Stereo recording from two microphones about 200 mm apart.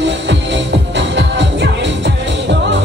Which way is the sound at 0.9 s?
65° right (ahead or behind).